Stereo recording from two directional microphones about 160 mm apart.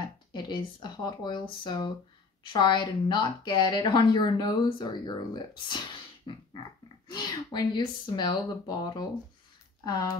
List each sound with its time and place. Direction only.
0.3 s a woman's voice: 25° left (ahead or behind)
7.1 s a woman's voice: 25° left (ahead or behind)